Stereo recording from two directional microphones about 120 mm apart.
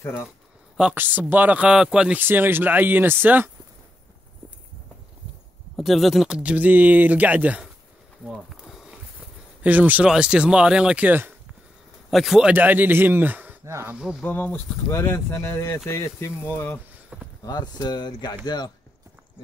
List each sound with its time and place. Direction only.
0.7 s speech: 10° right (ahead or behind)
5.8 s speech: centre (ahead or behind)
8.3 s bee: centre (ahead or behind)
9.6 s speech: 15° right (ahead or behind)
12.1 s a man's voice: centre (ahead or behind)
12.5 s speech: 15° right (ahead or behind)
14.2 s speech: 15° left (ahead or behind)
17.1 s speech: 5° right (ahead or behind)
17.5 s speech: 35° left (ahead or behind)